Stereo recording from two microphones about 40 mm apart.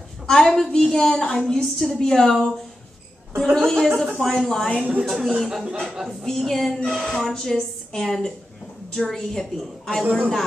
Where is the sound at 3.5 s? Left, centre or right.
Centre.